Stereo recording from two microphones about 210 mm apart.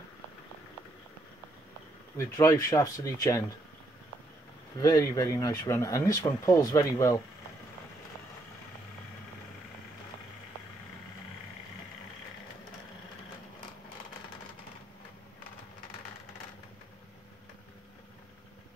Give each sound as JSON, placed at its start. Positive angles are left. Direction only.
{"t": 2.1, "sound": "speech", "side_deg": 15}
{"t": 4.7, "sound": "speech", "side_deg": 15}